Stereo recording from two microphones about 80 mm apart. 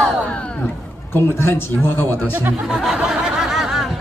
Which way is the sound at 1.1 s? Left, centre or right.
Left.